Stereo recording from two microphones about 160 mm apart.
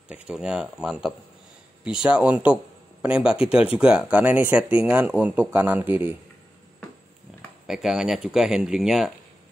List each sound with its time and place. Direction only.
0.1 s speech: 5° right (ahead or behind)
7.6 s speech: 5° right (ahead or behind)